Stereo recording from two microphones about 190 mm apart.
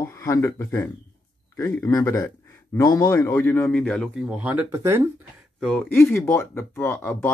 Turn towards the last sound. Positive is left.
turn(degrees=10)  # may be behind; listen again after turning